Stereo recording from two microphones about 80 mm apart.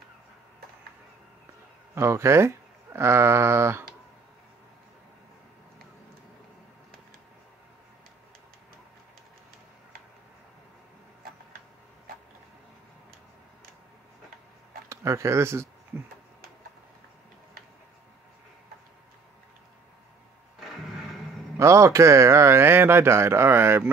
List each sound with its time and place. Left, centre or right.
2.0 s speech: right
14.9 s speech: right
20.6 s a sound: centre
21.5 s speech: right